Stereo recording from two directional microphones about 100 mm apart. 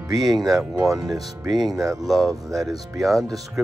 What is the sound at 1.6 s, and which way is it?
Speech, centre (ahead or behind).